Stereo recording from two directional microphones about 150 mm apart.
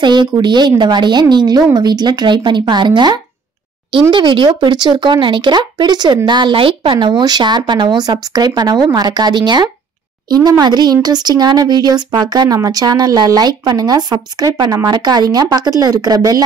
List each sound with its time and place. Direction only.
0.0 s speech: 30° right (ahead or behind)